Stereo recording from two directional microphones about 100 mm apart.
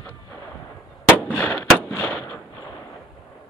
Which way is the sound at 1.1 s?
15° left (ahead or behind).